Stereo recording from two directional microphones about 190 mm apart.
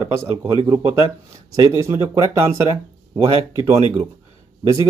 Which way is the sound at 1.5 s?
15° right (ahead or behind).